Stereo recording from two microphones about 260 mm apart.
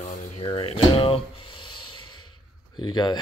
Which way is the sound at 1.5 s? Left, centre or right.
Left.